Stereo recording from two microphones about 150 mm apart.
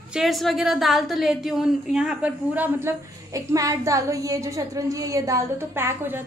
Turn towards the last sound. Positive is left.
turn(degrees=-15)  # may be behind; listen again after turning